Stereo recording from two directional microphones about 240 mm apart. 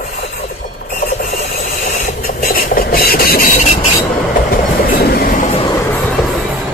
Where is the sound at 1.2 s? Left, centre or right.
Left.